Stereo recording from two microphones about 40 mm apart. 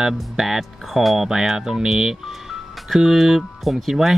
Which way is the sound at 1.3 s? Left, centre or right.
Centre.